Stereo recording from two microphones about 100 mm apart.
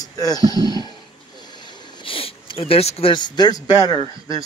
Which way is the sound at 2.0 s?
65° left (ahead or behind).